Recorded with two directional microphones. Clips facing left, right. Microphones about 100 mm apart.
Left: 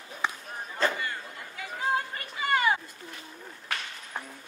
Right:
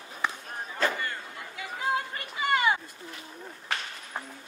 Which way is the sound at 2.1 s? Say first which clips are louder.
Even; 20° right (ahead or behind).